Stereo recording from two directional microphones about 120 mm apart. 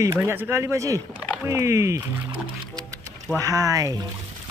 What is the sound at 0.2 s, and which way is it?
Speech, 20° right (ahead or behind).